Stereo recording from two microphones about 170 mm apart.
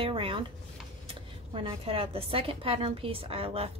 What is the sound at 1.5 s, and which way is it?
Speech, 30° right (ahead or behind).